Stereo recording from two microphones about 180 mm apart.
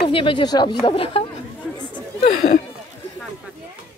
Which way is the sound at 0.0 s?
30° left (ahead or behind).